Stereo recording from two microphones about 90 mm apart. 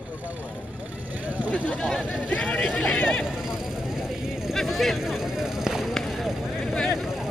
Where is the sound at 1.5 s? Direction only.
10° left (ahead or behind).